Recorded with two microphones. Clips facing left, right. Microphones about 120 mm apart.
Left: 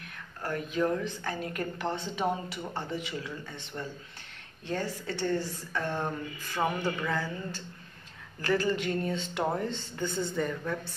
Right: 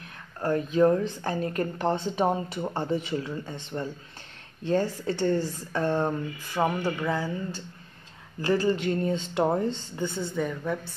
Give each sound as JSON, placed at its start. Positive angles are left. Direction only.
{"t": 0.4, "sound": "a woman's voice", "side_deg": -30}
{"t": 6.5, "sound": "speech", "side_deg": -15}
{"t": 9.9, "sound": "a woman's voice", "side_deg": -5}